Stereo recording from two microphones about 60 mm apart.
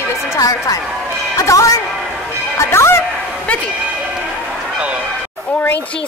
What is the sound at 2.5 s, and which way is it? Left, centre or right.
Speech, left.